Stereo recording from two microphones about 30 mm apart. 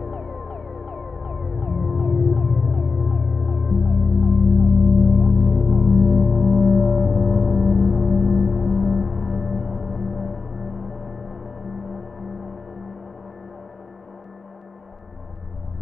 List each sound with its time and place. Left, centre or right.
0.0 s music: centre
5.4 s music: centre
5.7 s music: centre